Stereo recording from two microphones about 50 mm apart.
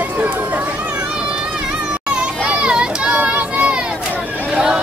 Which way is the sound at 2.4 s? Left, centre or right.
Centre.